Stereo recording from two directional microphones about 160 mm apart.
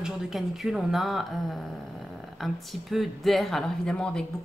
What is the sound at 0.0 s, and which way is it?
Speech, centre (ahead or behind).